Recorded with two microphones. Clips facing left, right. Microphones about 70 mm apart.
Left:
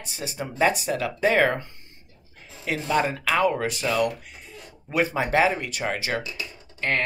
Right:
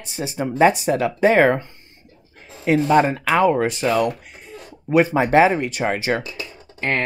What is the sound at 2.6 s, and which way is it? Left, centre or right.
Speech, right.